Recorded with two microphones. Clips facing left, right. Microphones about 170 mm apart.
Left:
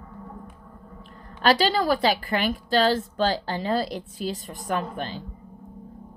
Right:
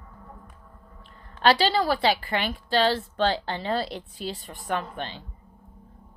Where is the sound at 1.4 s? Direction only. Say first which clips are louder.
Left 1 dB; 45° left (ahead or behind).